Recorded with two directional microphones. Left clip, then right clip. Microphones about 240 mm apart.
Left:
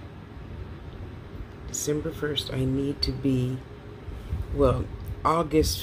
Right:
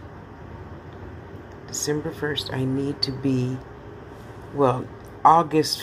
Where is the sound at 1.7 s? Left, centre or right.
Centre.